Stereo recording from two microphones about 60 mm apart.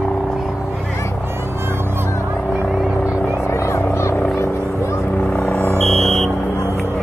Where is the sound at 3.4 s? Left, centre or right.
Left.